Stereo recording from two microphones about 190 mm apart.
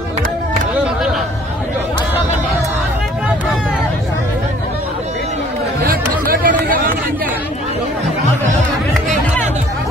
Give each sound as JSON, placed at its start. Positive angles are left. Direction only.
{"t": 5.9, "sound": "chatter", "side_deg": -50}